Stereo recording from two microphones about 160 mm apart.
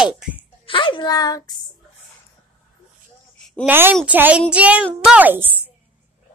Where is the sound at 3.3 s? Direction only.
5° left (ahead or behind).